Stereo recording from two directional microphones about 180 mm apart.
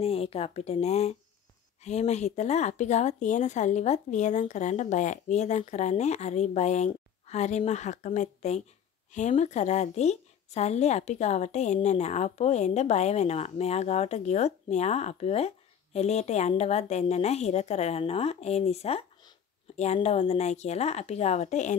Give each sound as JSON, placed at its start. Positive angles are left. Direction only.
{"t": 0.0, "sound": "a woman's voice", "side_deg": 35}